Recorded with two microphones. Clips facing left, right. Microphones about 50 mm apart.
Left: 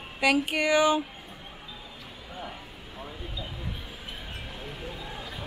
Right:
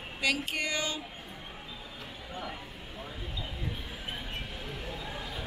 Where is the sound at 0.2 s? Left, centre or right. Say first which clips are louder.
Left 7 dB; centre.